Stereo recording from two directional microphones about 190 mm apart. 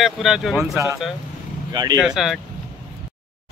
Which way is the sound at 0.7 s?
15° right (ahead or behind).